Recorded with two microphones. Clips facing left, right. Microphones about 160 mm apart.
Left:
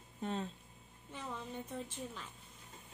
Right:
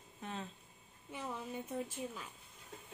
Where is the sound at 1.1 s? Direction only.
10° right (ahead or behind).